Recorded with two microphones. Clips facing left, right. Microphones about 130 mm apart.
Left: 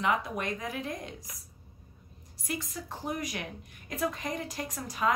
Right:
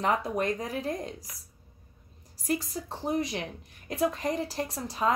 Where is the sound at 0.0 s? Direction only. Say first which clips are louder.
Right 3 dB; 35° right (ahead or behind).